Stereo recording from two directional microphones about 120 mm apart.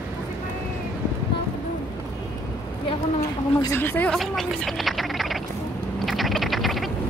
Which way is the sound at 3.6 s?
20° left (ahead or behind).